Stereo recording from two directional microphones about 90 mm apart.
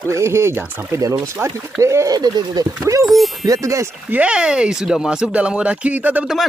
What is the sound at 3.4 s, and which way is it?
Speech, 40° right (ahead or behind).